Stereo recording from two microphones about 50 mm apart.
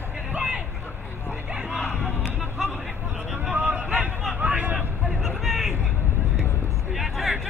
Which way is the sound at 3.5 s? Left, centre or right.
Right.